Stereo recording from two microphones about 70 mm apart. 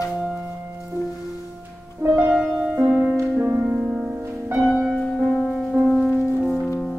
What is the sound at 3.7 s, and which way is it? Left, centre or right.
Music, centre.